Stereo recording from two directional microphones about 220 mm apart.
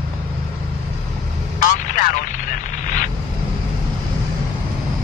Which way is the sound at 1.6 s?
35° left (ahead or behind).